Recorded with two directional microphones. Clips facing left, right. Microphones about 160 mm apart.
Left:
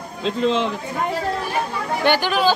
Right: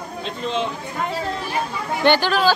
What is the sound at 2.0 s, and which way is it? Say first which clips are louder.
Speech: right 1 dB; 10° left (ahead or behind).